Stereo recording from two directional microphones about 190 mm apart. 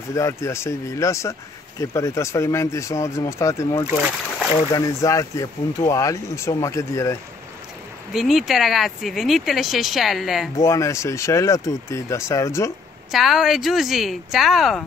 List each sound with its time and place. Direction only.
0.1 s speech: 15° left (ahead or behind)
8.1 s speech: centre (ahead or behind)
10.6 s speech: 15° left (ahead or behind)
13.1 s speech: centre (ahead or behind)